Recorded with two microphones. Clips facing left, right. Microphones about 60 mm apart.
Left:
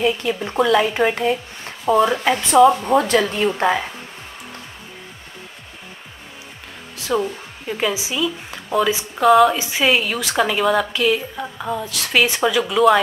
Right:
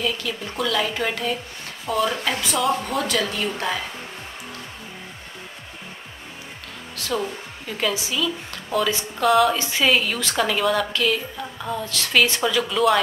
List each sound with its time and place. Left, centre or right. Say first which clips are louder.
0.0 s speech: left 6 dB; left
7.1 s a woman's voice: left 5 dB; centre